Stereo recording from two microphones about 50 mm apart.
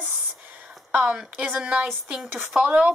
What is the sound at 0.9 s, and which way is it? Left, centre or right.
Speech, right.